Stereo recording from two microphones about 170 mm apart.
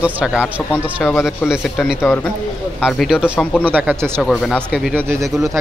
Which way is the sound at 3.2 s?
10° left (ahead or behind).